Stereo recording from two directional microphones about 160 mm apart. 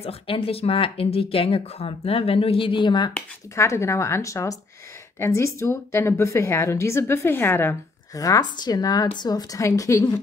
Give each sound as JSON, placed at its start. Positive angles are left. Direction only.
{"t": 0.0, "sound": "speech", "side_deg": 35}
{"t": 3.2, "sound": "a woman's voice", "side_deg": 15}